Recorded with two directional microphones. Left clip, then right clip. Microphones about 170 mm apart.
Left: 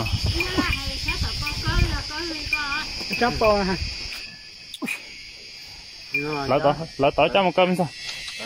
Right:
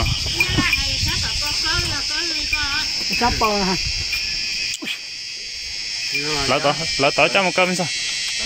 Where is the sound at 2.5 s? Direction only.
70° left (ahead or behind).